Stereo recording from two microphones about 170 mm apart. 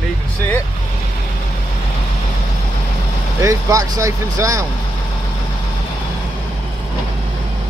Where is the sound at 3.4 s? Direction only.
20° right (ahead or behind).